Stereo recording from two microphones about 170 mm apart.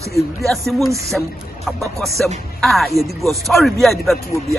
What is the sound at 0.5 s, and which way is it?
Speech, centre (ahead or behind).